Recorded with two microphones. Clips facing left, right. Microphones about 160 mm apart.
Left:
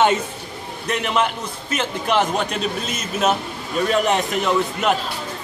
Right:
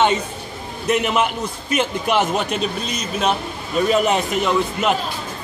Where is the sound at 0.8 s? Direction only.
5° right (ahead or behind).